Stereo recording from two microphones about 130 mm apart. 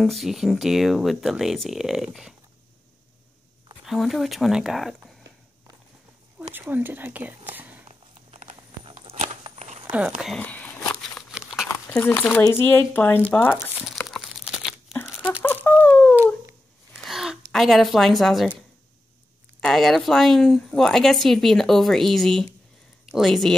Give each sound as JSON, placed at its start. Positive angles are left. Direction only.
{"t": 0.0, "sound": "a woman's voice", "side_deg": 0}
{"t": 3.8, "sound": "a woman's voice", "side_deg": 0}
{"t": 6.5, "sound": "speech", "side_deg": -15}
{"t": 7.9, "sound": "a sound", "side_deg": -55}
{"t": 9.8, "sound": "speech", "side_deg": -10}
{"t": 10.3, "sound": "speech", "side_deg": 10}
{"t": 11.3, "sound": "a sound", "side_deg": -5}
{"t": 12.2, "sound": "speech", "side_deg": 10}
{"t": 13.8, "sound": "crumpling", "side_deg": 0}
{"t": 15.4, "sound": "a sound", "side_deg": 15}
{"t": 17.0, "sound": "a sound", "side_deg": -5}
{"t": 19.6, "sound": "a woman's voice", "side_deg": 0}